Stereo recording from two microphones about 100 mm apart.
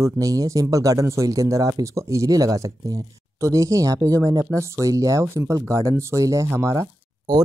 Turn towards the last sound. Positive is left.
turn(degrees=-35)  # may be behind; listen again after turning